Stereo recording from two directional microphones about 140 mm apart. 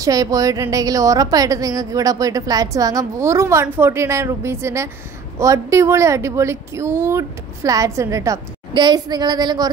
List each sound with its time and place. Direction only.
0.0 s a woman's voice: 25° right (ahead or behind)